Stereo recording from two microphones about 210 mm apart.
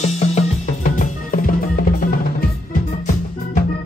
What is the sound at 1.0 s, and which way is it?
Music, 40° left (ahead or behind).